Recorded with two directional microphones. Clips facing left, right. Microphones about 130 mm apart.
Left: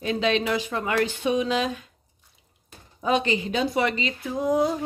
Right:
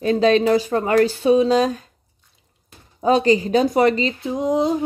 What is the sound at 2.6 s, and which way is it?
Speech, 35° right (ahead or behind).